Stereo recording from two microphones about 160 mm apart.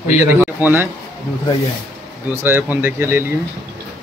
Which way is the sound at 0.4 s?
10° right (ahead or behind).